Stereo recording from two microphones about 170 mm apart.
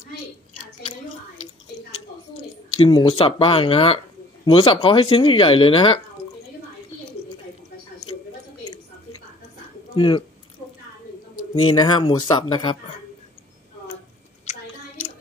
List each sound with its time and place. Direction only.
2.8 s speech: 25° left (ahead or behind)
9.9 s speech: 25° left (ahead or behind)
11.7 s speech: 25° left (ahead or behind)